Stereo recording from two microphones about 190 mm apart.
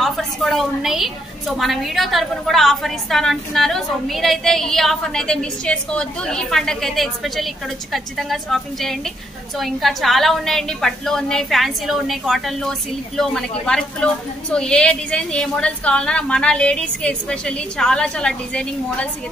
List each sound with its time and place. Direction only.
0.0 s a woman's voice: centre (ahead or behind)